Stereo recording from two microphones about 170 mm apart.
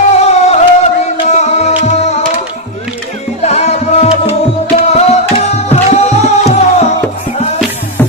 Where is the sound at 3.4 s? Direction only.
40° left (ahead or behind).